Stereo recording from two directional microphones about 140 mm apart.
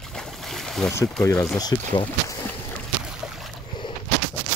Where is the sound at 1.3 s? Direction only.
5° left (ahead or behind).